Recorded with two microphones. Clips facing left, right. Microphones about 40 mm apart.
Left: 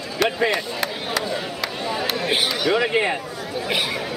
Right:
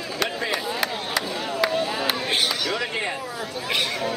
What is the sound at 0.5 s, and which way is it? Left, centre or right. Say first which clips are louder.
Chop: left 1 dB; centre.